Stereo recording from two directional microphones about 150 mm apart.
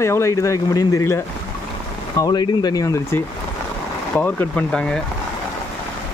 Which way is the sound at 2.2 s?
25° left (ahead or behind).